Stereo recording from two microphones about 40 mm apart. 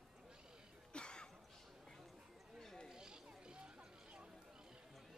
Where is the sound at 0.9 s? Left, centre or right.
Left.